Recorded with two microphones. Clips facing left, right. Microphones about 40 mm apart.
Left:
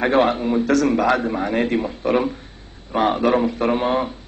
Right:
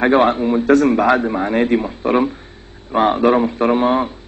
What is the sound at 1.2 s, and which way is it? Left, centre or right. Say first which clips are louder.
A man's voice: right 3 dB; centre.